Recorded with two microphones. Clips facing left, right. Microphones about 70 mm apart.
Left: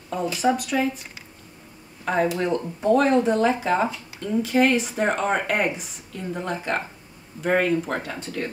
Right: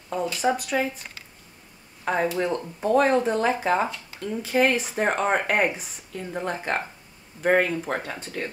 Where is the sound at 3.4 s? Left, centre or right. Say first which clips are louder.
Left 1 dB; centre.